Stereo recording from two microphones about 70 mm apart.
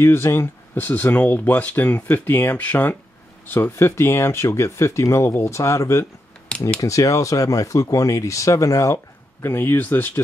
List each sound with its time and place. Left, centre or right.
0.0 s speech: left